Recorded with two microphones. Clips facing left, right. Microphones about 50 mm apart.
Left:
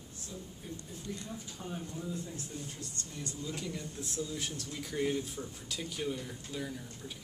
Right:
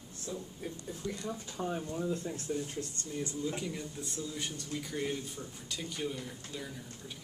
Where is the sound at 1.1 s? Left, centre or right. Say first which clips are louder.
Right 3 dB; right.